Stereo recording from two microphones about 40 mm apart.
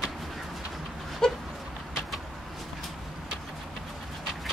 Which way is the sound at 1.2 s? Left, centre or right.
Centre.